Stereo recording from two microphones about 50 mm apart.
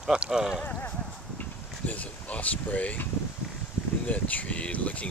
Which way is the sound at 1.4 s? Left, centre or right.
Left.